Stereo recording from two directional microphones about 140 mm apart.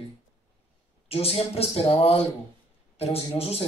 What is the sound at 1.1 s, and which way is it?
Speech, 45° left (ahead or behind).